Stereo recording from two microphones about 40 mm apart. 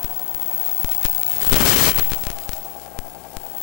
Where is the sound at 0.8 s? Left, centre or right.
Centre.